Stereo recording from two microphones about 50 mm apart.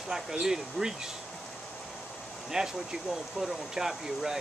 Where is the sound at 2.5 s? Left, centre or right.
Centre.